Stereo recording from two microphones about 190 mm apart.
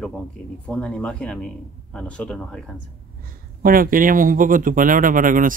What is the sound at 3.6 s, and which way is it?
Speech, 50° right (ahead or behind).